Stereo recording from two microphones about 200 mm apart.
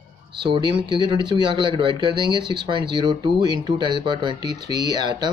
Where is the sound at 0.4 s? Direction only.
25° right (ahead or behind).